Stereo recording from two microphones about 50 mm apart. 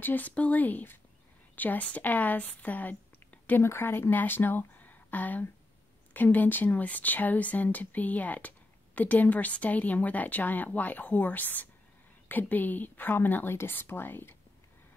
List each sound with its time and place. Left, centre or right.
0.0 s a woman's voice: left
3.6 s speech: left
4.1 s speech: left